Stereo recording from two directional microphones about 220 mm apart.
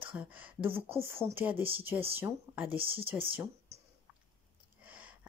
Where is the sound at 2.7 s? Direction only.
25° right (ahead or behind).